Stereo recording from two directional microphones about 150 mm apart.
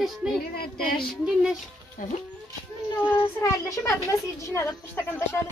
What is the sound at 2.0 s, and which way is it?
Speech, 65° left (ahead or behind).